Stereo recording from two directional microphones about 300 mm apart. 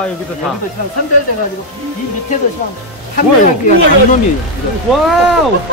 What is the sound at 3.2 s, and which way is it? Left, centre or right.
Speech, left.